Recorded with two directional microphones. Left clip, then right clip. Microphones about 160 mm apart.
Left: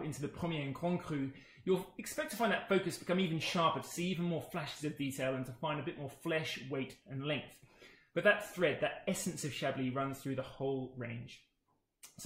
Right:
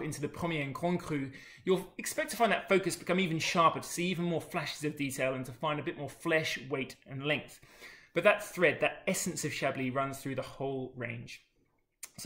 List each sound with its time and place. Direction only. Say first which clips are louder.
0.0 s speech: right 5 dB; 10° right (ahead or behind)